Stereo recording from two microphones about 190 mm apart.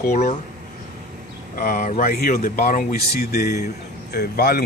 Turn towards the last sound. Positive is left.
turn(degrees=55)  # may be behind; listen again after turning